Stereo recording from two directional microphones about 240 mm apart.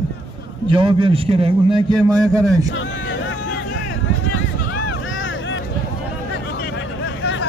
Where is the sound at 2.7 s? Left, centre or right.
Left.